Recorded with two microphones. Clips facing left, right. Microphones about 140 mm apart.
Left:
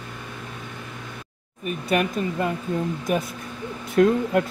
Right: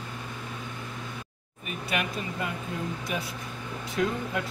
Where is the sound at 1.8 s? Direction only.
40° left (ahead or behind).